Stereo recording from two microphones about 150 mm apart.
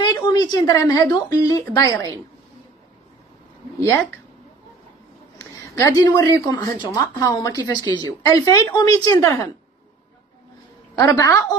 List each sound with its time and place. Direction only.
0.0 s a woman's voice: 30° left (ahead or behind)
3.8 s speech: 15° left (ahead or behind)
5.4 s speech: 20° left (ahead or behind)
11.0 s speech: 25° left (ahead or behind)